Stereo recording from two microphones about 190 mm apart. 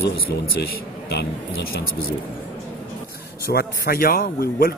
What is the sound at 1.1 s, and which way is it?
Speech, 60° left (ahead or behind).